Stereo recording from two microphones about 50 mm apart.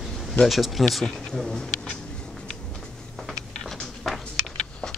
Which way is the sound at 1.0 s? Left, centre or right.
Centre.